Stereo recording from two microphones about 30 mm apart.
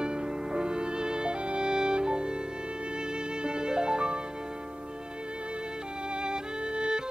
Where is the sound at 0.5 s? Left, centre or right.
Right.